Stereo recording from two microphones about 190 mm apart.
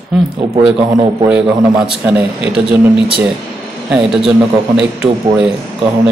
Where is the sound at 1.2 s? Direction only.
5° right (ahead or behind).